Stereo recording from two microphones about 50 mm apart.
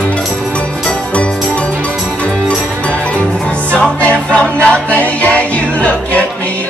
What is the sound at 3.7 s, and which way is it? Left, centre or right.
Music, left.